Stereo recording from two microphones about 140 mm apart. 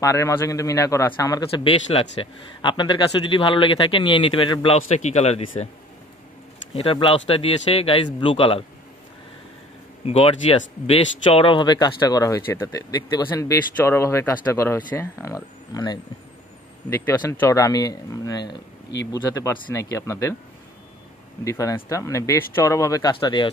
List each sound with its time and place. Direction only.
0.0 s speech: 20° left (ahead or behind)
1.5 s speech: 40° left (ahead or behind)
4.6 s speech: 50° left (ahead or behind)
6.9 s speech: 40° left (ahead or behind)
10.0 s speech: 45° left (ahead or behind); by 16.0 s 25° left (ahead or behind)
16.9 s speech: 15° left (ahead or behind)
21.5 s speech: 25° left (ahead or behind)
23.1 s speech: 35° left (ahead or behind)